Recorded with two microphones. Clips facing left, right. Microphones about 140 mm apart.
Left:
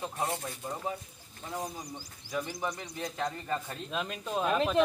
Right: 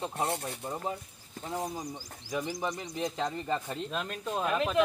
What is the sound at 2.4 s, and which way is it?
Speech, 20° right (ahead or behind).